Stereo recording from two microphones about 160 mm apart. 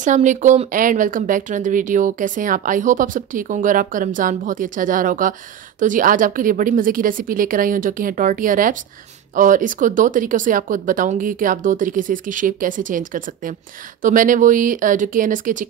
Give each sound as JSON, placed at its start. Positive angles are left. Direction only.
{"t": 0.0, "sound": "speech", "side_deg": -50}